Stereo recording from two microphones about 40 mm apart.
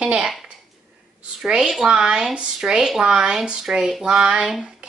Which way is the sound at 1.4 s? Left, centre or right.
Centre.